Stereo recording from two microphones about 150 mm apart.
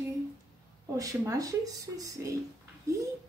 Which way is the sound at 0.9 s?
25° right (ahead or behind).